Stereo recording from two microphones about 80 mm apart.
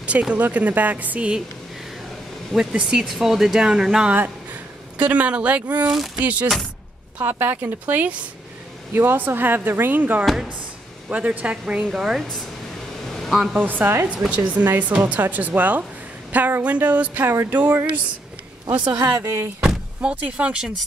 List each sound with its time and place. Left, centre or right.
0.0 s speech: centre
2.5 s speech: centre
4.9 s speech: centre
13.1 s a sound: centre
13.7 s speech: right
19.2 s speech: right
19.6 s speech: centre